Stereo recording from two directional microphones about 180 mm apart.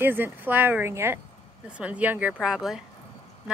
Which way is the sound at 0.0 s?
10° right (ahead or behind).